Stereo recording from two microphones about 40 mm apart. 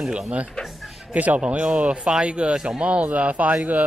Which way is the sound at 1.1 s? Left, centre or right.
Right.